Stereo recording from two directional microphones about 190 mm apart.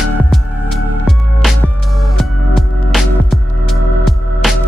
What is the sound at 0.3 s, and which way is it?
Music, centre (ahead or behind).